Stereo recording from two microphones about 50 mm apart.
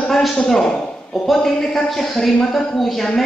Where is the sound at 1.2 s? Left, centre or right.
Centre.